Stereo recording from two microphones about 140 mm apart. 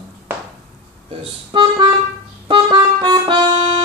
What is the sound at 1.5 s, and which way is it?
Music, 35° right (ahead or behind).